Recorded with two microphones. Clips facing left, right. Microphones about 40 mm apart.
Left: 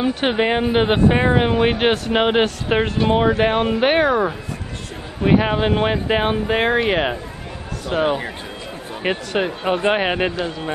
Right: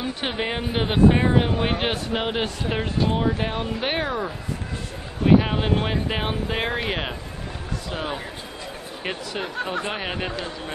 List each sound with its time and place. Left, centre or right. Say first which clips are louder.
0.2 s speech: left 8 dB; left
3.8 s speech: left 9 dB; left
5.2 s speech: left 2 dB; left
7.9 s speech: left 11 dB; left
9.3 s speech: left 7 dB; left